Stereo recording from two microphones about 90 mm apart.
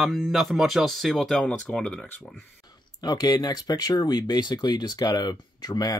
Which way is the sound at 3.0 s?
50° left (ahead or behind).